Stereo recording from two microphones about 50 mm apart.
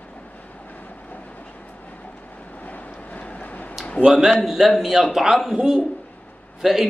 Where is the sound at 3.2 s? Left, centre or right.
Left.